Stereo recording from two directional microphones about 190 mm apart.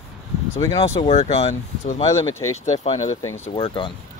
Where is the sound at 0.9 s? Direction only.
35° left (ahead or behind).